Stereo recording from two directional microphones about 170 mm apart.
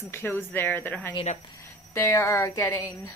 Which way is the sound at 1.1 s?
35° left (ahead or behind).